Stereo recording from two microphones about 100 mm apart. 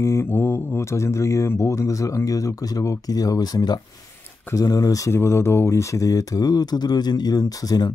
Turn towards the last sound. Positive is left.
turn(degrees=40)  # may be behind; listen again after turning